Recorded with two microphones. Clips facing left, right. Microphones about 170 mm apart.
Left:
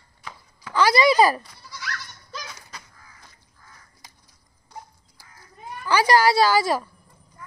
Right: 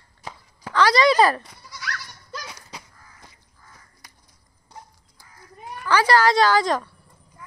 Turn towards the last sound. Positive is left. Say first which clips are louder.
# even
turn(degrees=5)  # may be behind; listen again after turning